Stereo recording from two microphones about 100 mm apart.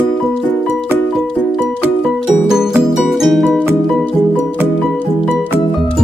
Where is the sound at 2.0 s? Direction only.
5° right (ahead or behind).